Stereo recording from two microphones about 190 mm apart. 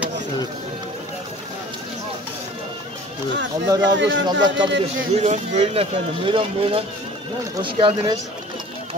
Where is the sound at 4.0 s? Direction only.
70° right (ahead or behind).